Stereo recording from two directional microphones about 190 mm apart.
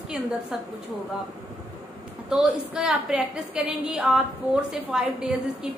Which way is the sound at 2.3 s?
5° right (ahead or behind).